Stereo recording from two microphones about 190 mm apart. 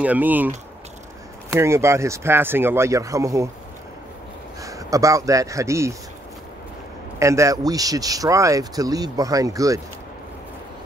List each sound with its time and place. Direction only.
0.0 s speech: 10° right (ahead or behind)
4.6 s speech: 15° right (ahead or behind)
7.2 s speech: 15° right (ahead or behind)